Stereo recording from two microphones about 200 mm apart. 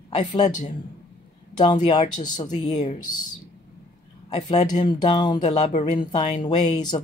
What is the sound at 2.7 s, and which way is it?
Speech, 35° left (ahead or behind).